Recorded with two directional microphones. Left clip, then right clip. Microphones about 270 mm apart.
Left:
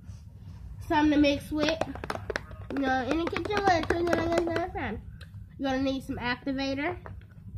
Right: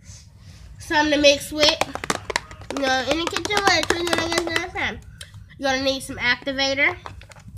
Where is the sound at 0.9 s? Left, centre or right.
Centre.